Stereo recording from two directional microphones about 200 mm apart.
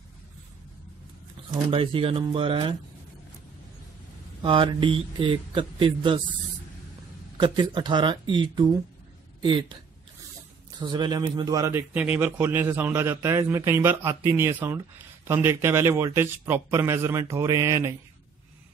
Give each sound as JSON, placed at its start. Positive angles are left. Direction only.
{"t": 1.7, "sound": "a man's voice", "side_deg": -25}
{"t": 4.4, "sound": "a man's voice", "side_deg": -25}
{"t": 7.3, "sound": "a man's voice", "side_deg": -25}
{"t": 10.8, "sound": "speech", "side_deg": -20}